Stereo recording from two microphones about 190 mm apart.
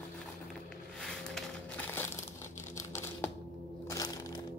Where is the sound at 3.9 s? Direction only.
20° left (ahead or behind).